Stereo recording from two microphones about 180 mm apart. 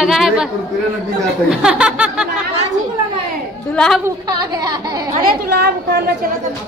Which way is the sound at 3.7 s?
5° left (ahead or behind).